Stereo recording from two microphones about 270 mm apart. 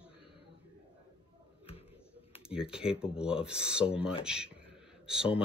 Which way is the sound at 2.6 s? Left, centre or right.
Centre.